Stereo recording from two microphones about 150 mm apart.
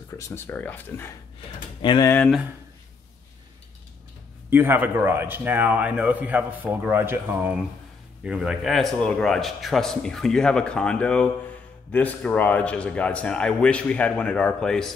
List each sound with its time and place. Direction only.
0.3 s a man's voice: 10° left (ahead or behind)
1.8 s speech: 35° left (ahead or behind)
2.0 s a man's voice: 10° left (ahead or behind)
4.5 s a man's voice: 15° right (ahead or behind); by 15.0 s 5° left (ahead or behind)